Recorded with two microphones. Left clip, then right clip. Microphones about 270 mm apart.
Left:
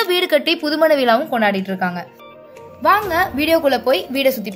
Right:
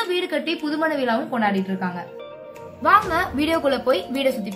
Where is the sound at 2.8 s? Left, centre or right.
Left.